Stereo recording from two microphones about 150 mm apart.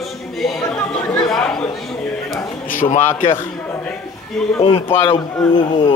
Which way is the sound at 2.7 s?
65° left (ahead or behind).